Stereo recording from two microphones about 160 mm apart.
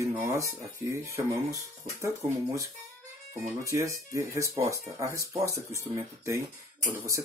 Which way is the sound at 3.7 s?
20° right (ahead or behind).